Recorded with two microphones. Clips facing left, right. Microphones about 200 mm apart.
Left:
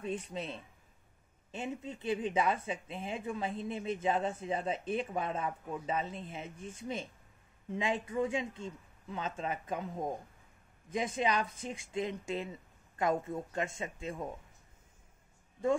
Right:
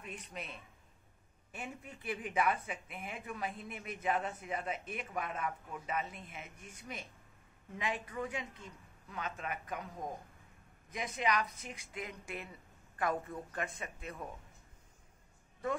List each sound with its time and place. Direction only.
0.0 s speech: 30° left (ahead or behind)